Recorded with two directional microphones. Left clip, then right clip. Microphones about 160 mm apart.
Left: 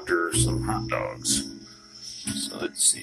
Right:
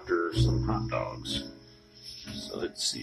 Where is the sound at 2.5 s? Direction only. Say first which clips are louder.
Left 3 dB; 20° right (ahead or behind).